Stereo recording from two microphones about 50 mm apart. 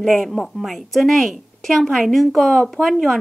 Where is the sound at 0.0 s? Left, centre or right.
Centre.